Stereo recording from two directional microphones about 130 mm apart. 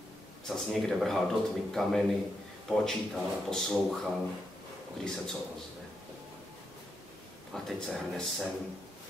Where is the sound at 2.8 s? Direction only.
5° left (ahead or behind).